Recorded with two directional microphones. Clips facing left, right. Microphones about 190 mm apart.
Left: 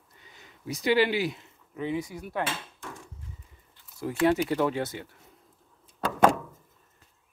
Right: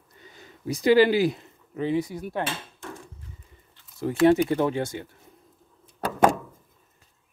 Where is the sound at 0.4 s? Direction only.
40° right (ahead or behind).